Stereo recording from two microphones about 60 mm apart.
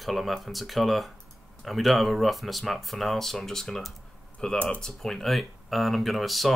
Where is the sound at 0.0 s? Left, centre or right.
Centre.